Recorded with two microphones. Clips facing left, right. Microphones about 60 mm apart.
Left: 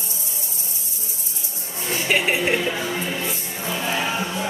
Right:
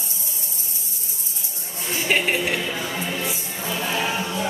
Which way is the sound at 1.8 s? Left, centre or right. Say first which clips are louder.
Left 1 dB; centre.